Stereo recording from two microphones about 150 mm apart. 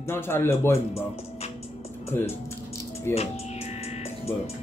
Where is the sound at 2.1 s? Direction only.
15° left (ahead or behind).